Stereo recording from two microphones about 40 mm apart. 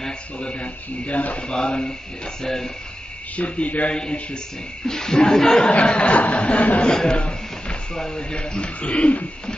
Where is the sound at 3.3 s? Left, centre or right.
Left.